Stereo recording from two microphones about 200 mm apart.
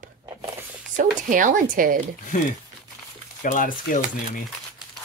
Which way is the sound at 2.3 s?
40° left (ahead or behind).